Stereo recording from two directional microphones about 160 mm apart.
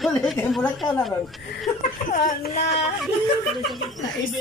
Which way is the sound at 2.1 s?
55° left (ahead or behind).